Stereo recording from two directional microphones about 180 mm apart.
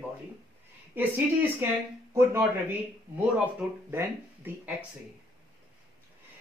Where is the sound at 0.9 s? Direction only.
10° right (ahead or behind).